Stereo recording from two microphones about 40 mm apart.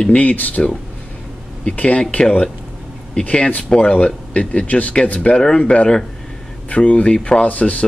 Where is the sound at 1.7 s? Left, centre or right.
Left.